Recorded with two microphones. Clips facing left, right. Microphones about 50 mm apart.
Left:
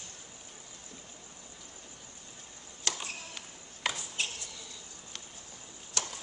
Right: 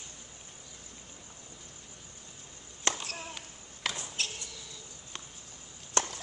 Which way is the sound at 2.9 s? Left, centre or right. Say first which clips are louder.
Right 4 dB; right.